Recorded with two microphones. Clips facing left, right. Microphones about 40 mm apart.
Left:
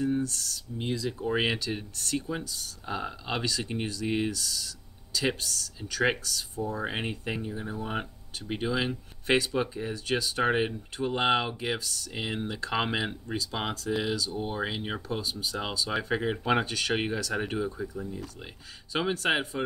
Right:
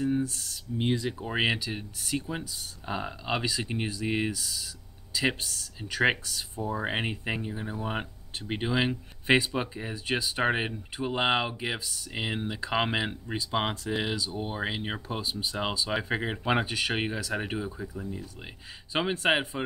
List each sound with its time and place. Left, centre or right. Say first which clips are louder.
0.0 s speech: even; centre